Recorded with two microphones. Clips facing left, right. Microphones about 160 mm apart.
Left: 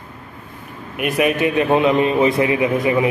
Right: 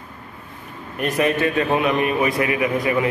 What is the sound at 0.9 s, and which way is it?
A man's voice, 10° left (ahead or behind).